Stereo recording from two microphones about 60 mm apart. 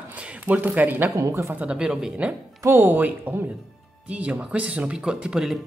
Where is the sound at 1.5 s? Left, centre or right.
Centre.